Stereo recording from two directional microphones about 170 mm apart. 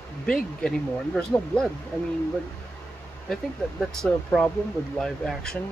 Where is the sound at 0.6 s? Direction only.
5° left (ahead or behind).